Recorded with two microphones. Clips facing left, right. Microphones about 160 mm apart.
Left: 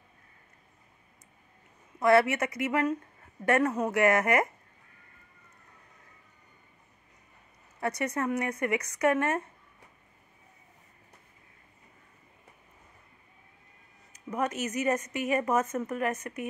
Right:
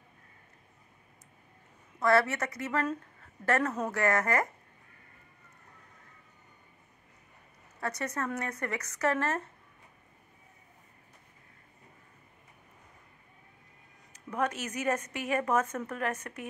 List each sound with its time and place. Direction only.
2.0 s speech: 20° left (ahead or behind)
8.0 s speech: 20° left (ahead or behind)
14.3 s speech: 5° left (ahead or behind)